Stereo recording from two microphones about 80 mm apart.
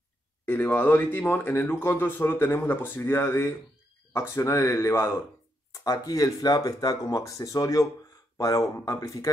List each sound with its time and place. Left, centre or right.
0.5 s speech: left
5.7 s speech: left